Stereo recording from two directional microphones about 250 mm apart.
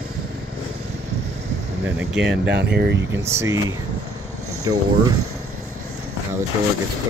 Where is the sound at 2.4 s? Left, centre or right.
Right.